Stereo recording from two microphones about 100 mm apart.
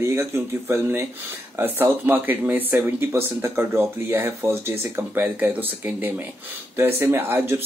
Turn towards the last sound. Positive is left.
turn(degrees=-25)  # may be behind; listen again after turning